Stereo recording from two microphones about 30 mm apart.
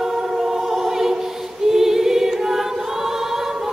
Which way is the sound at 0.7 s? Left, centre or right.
Centre.